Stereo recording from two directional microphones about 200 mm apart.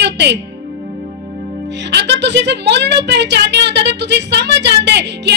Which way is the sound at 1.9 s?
60° right (ahead or behind).